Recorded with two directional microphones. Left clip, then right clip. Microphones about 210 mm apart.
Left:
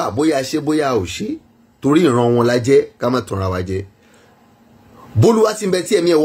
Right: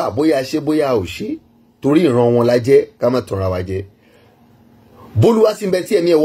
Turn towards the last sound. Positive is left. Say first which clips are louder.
# right 1 dB
turn(degrees=20)  # may be behind; listen again after turning